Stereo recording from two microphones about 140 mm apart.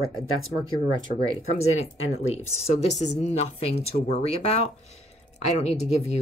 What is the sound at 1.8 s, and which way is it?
Speech, 50° left (ahead or behind).